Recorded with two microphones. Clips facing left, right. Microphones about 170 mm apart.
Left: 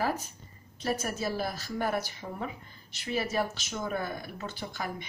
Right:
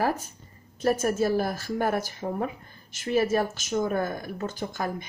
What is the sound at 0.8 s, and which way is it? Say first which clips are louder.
Speech: right 8 dB; 45° right (ahead or behind).